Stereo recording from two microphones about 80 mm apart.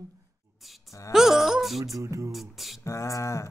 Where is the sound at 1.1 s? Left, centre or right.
Centre.